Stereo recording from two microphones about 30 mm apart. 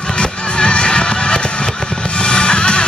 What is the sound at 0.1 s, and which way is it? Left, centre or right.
Music, left.